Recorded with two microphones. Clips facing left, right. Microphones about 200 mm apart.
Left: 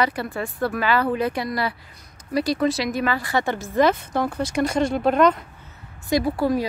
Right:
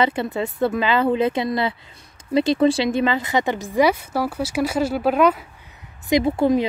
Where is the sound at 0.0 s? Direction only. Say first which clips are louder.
Right 3 dB; 25° right (ahead or behind); by 5.4 s 5° right (ahead or behind).